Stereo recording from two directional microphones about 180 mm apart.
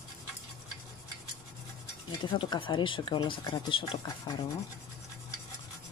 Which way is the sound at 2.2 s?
25° left (ahead or behind).